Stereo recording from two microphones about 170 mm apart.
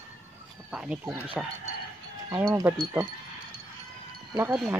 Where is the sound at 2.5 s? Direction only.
10° right (ahead or behind).